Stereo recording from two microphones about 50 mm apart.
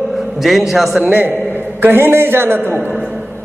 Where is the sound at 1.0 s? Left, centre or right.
Right.